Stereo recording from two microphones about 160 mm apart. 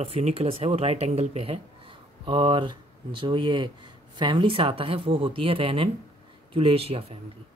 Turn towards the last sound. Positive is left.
turn(degrees=-40)  # may be behind; listen again after turning